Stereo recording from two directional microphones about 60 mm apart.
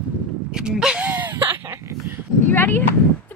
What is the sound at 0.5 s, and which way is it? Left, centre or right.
Speech, centre.